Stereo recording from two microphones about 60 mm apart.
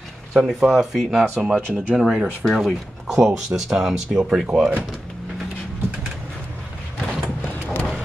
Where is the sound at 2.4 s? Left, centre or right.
Centre.